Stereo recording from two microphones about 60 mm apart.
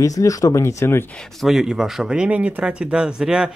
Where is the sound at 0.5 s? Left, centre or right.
Left.